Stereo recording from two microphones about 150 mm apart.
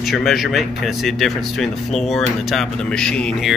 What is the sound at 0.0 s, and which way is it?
Speech, centre (ahead or behind).